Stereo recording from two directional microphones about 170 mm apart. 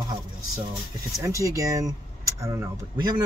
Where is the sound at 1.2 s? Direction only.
20° right (ahead or behind).